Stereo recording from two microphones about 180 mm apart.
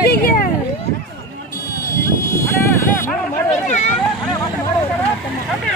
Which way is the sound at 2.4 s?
15° left (ahead or behind).